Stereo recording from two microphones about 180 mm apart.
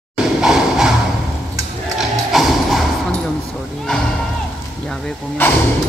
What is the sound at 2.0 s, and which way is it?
Music, centre (ahead or behind).